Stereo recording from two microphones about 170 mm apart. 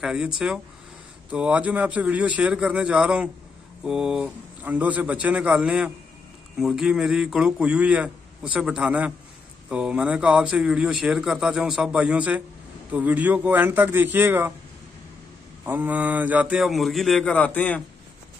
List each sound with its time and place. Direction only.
0.0 s speech: 5° right (ahead or behind)
1.3 s a man's voice: 5° right (ahead or behind)
15.6 s speech: 10° right (ahead or behind); by 17.8 s 10° left (ahead or behind)